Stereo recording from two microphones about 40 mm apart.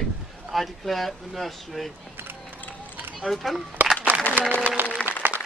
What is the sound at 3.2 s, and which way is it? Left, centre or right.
Speech, centre.